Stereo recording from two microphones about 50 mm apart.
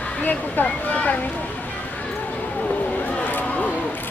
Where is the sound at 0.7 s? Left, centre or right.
Left.